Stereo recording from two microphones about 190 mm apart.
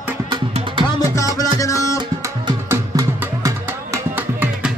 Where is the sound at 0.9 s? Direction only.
20° left (ahead or behind).